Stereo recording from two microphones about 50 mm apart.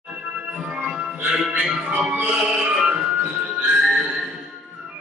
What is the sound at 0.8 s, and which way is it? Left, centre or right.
Music, centre.